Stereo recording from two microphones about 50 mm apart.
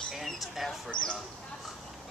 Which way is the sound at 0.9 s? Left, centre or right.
Centre.